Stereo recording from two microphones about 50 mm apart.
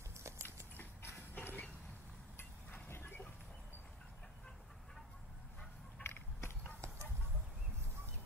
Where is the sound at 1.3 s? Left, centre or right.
Left.